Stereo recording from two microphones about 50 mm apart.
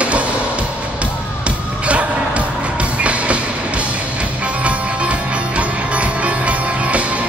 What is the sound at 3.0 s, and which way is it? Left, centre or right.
Train, right.